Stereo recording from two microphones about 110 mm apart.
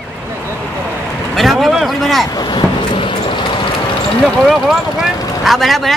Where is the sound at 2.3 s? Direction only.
45° left (ahead or behind).